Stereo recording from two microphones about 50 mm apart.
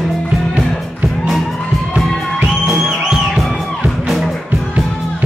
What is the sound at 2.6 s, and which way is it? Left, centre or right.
Music, centre.